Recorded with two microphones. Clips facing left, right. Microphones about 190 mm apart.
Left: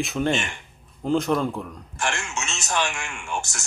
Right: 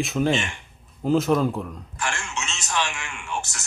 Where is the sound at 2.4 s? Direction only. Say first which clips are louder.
Left 1 dB; 50° left (ahead or behind).